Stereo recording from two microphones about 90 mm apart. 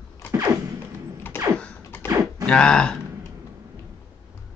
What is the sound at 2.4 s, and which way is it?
Speech, 10° left (ahead or behind).